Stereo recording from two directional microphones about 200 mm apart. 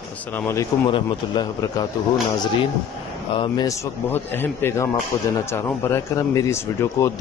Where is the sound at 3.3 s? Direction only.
20° left (ahead or behind).